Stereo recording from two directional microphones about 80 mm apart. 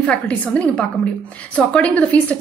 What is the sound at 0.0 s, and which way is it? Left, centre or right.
A woman's voice, centre.